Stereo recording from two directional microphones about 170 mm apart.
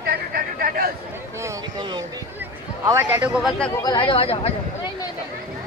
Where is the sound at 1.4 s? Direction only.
20° right (ahead or behind).